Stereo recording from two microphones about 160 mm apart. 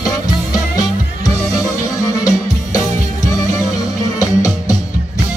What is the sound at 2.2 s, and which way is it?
Music, 20° left (ahead or behind).